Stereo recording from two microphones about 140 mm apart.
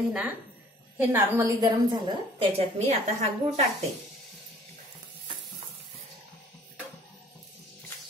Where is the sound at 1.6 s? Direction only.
35° right (ahead or behind).